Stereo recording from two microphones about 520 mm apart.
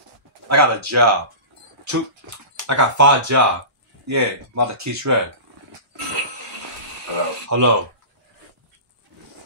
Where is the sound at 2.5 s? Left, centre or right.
Right.